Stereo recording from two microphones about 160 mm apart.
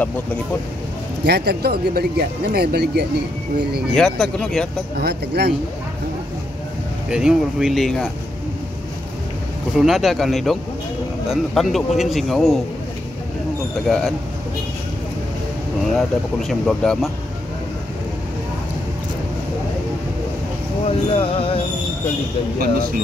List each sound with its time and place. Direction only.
1.2 s speech: 90° right
3.9 s speech: 5° left (ahead or behind)
5.0 s speech: 90° right
7.1 s speech: 5° right (ahead or behind)
9.8 s speech: centre (ahead or behind)
13.8 s speech: centre (ahead or behind)
15.9 s speech: centre (ahead or behind)
21.1 s a sound: 35° left (ahead or behind)
22.6 s speech: 70° right (ahead or behind)